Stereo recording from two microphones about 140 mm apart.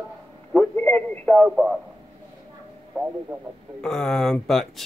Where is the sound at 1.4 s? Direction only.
5° right (ahead or behind).